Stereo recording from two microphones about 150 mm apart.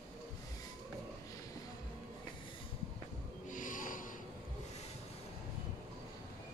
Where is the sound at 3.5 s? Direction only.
60° left (ahead or behind).